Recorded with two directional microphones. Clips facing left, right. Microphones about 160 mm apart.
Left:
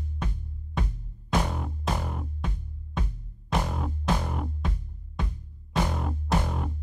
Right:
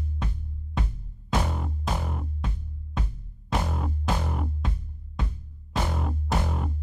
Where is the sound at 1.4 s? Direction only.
Centre (ahead or behind).